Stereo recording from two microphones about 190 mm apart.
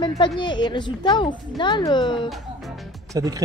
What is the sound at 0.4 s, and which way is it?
A woman's voice, 25° left (ahead or behind).